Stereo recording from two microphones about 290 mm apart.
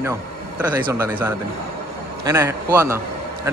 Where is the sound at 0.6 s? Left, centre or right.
Centre.